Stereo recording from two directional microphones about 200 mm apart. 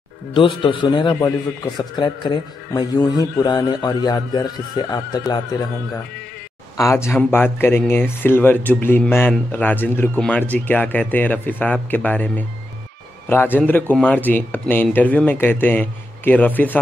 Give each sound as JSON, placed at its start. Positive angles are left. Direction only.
{"t": 0.3, "sound": "a man's voice", "side_deg": 25}
{"t": 6.8, "sound": "a man's voice", "side_deg": 15}